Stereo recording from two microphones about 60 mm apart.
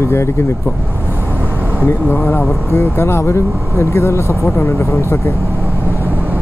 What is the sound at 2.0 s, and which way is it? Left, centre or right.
Speech, left.